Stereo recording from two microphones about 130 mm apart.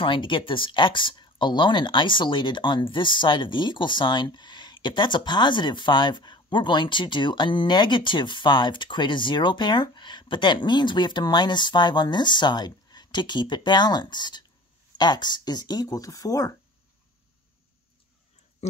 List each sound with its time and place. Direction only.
0.0 s speech: 40° left (ahead or behind)